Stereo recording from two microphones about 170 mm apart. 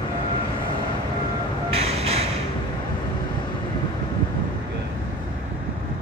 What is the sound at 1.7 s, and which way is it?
Music, 35° right (ahead or behind).